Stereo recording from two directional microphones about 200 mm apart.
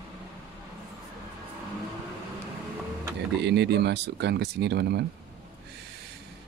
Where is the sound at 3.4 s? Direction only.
55° right (ahead or behind).